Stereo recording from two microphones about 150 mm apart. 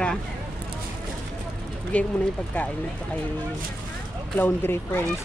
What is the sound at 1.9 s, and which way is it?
Speech, 10° left (ahead or behind).